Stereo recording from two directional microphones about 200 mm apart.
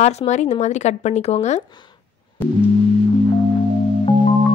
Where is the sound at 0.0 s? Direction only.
35° left (ahead or behind).